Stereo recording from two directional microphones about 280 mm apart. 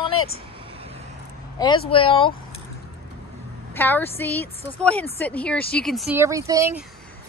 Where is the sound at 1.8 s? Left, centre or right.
Centre.